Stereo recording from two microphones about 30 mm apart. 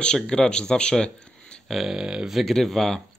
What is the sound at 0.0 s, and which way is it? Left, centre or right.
Speech, left.